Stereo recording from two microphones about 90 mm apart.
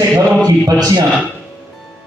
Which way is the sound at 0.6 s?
45° right (ahead or behind).